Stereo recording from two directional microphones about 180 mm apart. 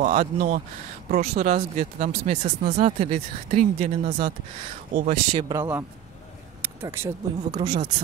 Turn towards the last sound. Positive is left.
turn(degrees=-25)  # may be behind; listen again after turning